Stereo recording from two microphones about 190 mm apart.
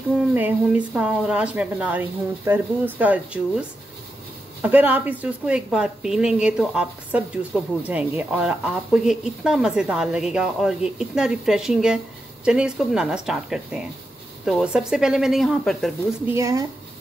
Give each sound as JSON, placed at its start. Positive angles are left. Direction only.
{"t": 0.3, "sound": "speech", "side_deg": -10}
{"t": 4.6, "sound": "a woman's voice", "side_deg": -10}
{"t": 16.3, "sound": "speech", "side_deg": -15}